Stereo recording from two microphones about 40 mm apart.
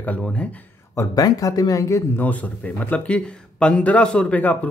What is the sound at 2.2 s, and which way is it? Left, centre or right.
Speech, left.